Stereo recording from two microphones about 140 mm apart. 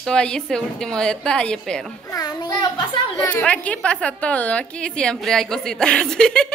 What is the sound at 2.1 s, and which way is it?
Speech, 25° left (ahead or behind).